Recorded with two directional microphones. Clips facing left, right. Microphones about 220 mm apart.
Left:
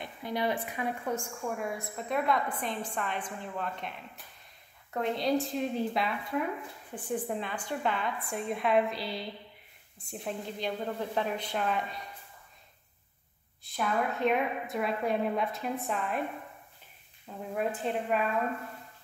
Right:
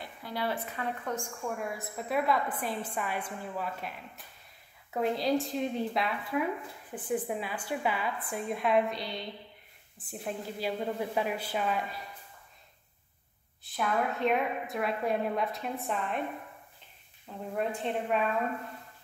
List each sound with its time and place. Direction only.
0.0 s a woman's voice: 20° left (ahead or behind); by 3.9 s 5° right (ahead or behind)
4.9 s a woman's voice: centre (ahead or behind)
13.7 s a woman's voice: centre (ahead or behind)
17.6 s a woman's voice: 5° left (ahead or behind)